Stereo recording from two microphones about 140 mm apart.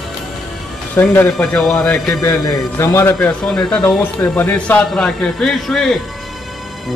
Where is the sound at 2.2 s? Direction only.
25° left (ahead or behind); by 6.0 s centre (ahead or behind).